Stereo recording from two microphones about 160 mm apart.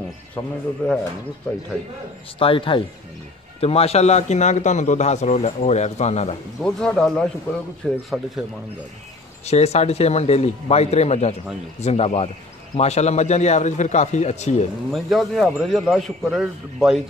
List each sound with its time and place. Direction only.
0.8 s speech: 5° left (ahead or behind)
2.3 s a man's voice: 35° left (ahead or behind)
6.6 s a man's voice: 5° left (ahead or behind)
9.5 s a man's voice: 40° left (ahead or behind)
14.9 s a man's voice: centre (ahead or behind)